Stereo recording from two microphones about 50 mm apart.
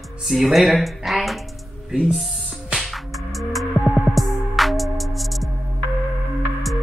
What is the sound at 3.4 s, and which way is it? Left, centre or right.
Music, centre.